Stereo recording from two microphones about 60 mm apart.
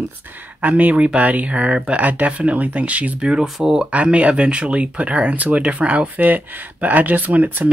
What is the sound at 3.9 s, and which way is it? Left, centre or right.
Speech, right.